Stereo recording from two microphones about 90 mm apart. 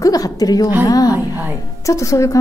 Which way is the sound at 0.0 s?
40° left (ahead or behind).